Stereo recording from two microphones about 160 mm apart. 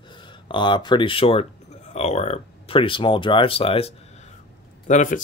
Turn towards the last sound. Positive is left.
turn(degrees=50)  # may be behind; listen again after turning